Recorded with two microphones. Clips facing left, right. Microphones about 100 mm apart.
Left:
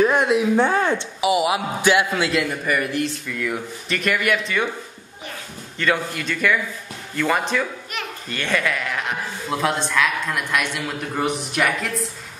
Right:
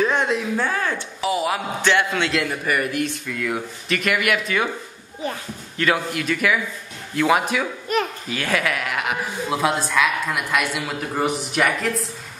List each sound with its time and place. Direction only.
0.0 s speech: 5° left (ahead or behind)
0.6 s speech: 20° left (ahead or behind)
1.2 s speech: 10° left (ahead or behind)
5.8 s speech: 5° right (ahead or behind)
7.9 s a child's voice: 40° right (ahead or behind)
8.3 s speech: 5° right (ahead or behind)